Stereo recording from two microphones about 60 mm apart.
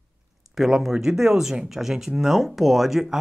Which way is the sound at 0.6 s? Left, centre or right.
Centre.